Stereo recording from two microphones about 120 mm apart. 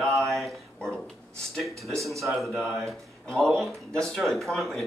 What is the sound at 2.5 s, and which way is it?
Speech, 20° right (ahead or behind).